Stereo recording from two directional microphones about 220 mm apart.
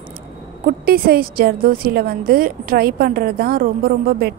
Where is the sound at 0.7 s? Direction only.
45° right (ahead or behind).